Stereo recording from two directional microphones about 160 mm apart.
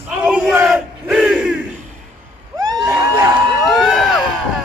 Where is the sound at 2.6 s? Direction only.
20° right (ahead or behind).